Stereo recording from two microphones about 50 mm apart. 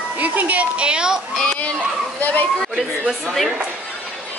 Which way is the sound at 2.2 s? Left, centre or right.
Left.